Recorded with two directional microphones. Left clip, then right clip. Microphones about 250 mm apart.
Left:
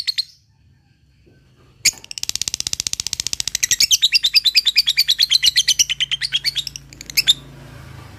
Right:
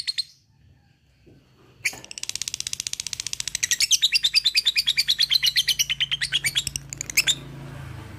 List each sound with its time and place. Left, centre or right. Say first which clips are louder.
0.0 s bird: left 6 dB; left
2.0 s a sound: left 7 dB; left
6.5 s bird: left 1 dB; centre